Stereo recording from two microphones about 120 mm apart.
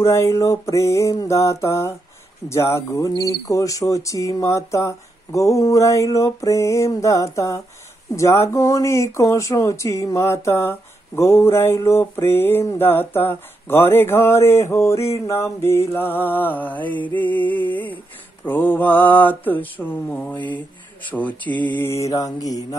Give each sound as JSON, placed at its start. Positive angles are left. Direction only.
{"t": 0.0, "sound": "speech", "side_deg": 25}
{"t": 15.9, "sound": "mantra", "side_deg": 15}
{"t": 21.7, "sound": "speech", "side_deg": 20}